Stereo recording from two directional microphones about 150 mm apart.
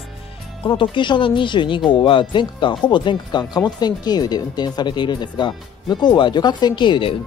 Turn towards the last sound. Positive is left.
turn(degrees=35)  # may be behind; listen again after turning